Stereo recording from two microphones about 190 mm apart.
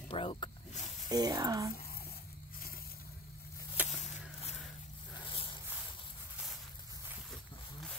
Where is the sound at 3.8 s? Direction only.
10° right (ahead or behind).